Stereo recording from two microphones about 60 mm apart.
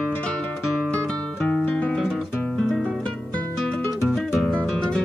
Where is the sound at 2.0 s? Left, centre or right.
Centre.